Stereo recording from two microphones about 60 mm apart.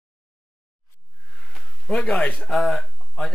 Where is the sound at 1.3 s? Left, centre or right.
Centre; by 2.4 s left.